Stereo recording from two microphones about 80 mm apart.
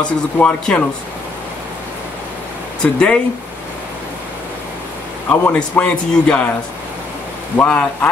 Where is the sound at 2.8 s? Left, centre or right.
Centre.